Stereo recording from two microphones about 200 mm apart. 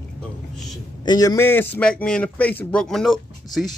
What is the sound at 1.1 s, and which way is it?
Speech, 20° left (ahead or behind).